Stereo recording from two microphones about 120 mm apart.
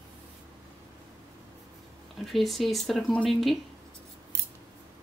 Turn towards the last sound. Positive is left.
turn(degrees=0)  # may be behind; listen again after turning